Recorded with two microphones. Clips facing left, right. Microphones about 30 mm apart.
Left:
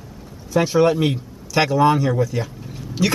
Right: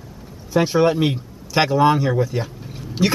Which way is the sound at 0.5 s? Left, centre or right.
Centre.